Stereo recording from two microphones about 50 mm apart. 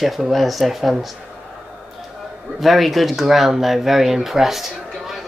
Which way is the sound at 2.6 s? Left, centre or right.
Centre.